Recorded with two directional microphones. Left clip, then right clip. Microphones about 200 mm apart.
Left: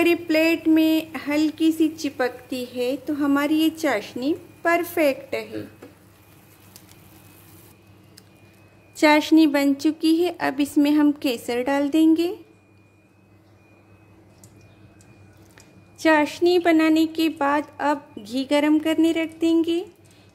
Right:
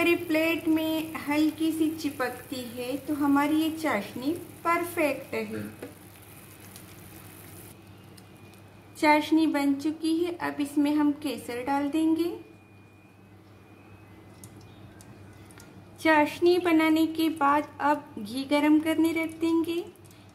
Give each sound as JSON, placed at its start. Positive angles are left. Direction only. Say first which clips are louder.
{"t": 0.0, "sound": "a woman's voice", "louder": "left 5 dB", "side_deg": 50}
{"t": 8.9, "sound": "a woman's voice", "louder": "left 6 dB", "side_deg": 45}
{"t": 16.0, "sound": "a woman's voice", "louder": "left 4 dB", "side_deg": 30}